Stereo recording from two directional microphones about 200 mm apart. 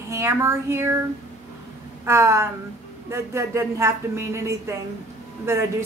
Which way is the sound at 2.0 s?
15° right (ahead or behind).